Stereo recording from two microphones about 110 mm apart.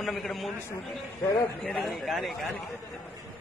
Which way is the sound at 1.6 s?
5° left (ahead or behind).